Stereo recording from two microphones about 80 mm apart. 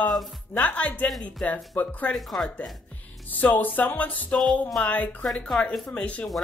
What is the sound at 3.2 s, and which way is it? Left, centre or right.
A woman's voice, left.